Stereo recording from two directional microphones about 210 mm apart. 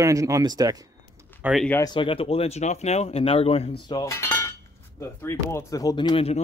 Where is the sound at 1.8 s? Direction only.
20° left (ahead or behind).